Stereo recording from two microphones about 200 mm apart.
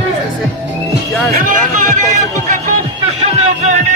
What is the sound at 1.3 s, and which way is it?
Music, 40° right (ahead or behind).